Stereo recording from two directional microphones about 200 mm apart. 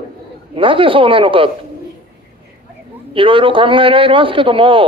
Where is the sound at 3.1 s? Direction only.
25° right (ahead or behind).